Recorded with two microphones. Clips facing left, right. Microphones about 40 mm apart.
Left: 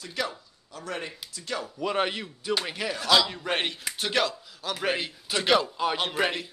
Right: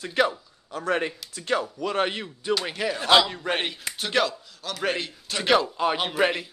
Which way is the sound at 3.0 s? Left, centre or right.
Right.